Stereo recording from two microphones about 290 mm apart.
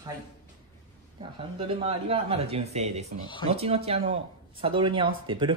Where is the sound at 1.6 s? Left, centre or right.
Centre.